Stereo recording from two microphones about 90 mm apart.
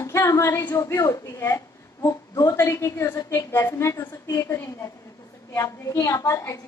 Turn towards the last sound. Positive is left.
turn(degrees=35)  # may be behind; listen again after turning